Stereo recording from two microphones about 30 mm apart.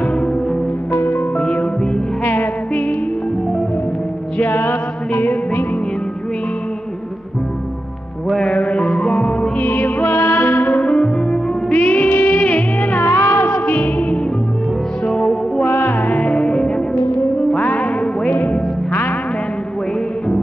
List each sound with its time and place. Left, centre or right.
1.5 s music: left
4.4 s music: left
8.5 s music: left
8.8 s music: left
9.7 s music: left
10.0 s music: left
10.7 s music: left
11.7 s music: left
15.1 s music: left
15.6 s music: left
16.3 s music: left
17.6 s music: left